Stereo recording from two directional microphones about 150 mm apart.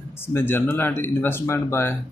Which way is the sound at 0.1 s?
15° left (ahead or behind).